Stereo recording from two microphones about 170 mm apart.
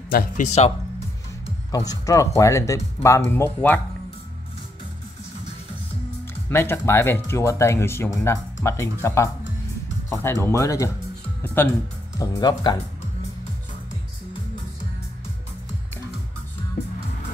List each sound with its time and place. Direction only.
0.1 s music: 45° left (ahead or behind)
1.7 s speech: 20° left (ahead or behind)
6.5 s speech: 15° left (ahead or behind)